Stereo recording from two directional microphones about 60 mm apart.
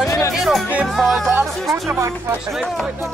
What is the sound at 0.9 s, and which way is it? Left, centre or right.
Music, centre.